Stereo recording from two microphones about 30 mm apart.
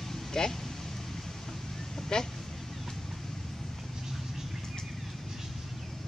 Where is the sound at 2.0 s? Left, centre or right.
Centre.